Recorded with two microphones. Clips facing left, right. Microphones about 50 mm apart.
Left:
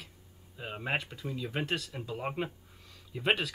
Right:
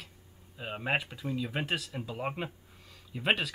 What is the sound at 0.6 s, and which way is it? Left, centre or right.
Speech, centre.